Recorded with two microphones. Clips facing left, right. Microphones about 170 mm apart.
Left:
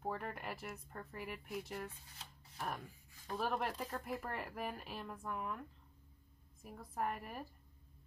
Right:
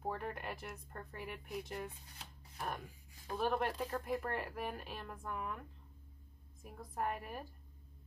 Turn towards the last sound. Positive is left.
turn(degrees=0)  # may be behind; listen again after turning